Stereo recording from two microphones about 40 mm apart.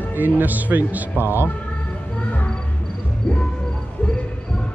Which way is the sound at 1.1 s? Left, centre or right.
Right.